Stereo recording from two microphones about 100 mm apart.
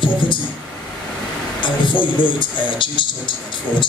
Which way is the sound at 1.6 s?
55° left (ahead or behind).